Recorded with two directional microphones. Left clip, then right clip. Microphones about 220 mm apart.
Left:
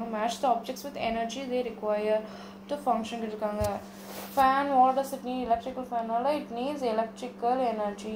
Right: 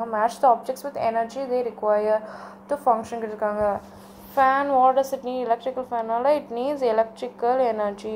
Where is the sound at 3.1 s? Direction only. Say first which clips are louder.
Right 6 dB; 5° right (ahead or behind).